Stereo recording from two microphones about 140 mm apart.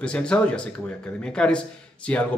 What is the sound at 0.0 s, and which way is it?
Speech, 10° left (ahead or behind).